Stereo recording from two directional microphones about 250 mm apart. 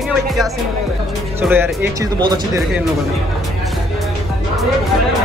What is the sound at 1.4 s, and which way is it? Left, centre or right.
Speech, centre.